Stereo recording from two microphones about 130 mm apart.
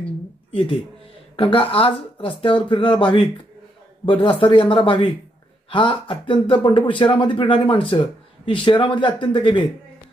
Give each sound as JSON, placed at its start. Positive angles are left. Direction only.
{"t": 0.5, "sound": "speech", "side_deg": 40}